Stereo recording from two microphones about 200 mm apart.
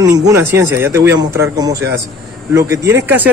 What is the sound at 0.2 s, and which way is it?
A man's voice, 15° right (ahead or behind).